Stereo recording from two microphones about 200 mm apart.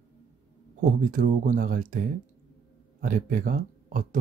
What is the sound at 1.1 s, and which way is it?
Speech, 40° right (ahead or behind).